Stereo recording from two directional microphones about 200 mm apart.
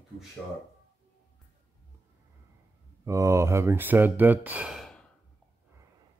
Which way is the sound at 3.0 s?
15° right (ahead or behind).